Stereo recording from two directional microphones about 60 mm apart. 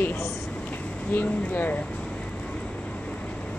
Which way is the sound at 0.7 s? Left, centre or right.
Left.